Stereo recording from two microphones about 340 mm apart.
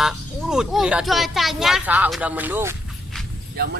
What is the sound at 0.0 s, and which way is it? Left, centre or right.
Speech, centre.